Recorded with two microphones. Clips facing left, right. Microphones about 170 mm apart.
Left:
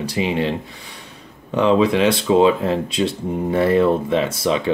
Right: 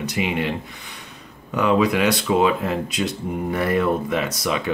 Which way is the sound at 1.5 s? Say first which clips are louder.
Left 3 dB; 30° left (ahead or behind).